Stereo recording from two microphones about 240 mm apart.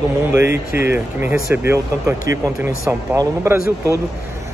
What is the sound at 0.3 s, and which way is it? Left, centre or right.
Speech, centre.